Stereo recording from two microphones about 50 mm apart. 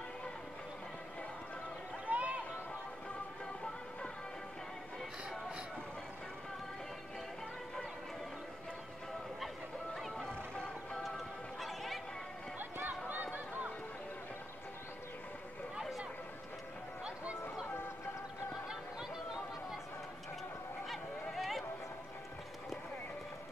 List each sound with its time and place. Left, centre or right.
2.0 s a sound: right
9.9 s music: centre
10.2 s music: centre
11.6 s chatter: centre
12.5 s run: right
18.7 s chatter: centre
20.9 s a sound: centre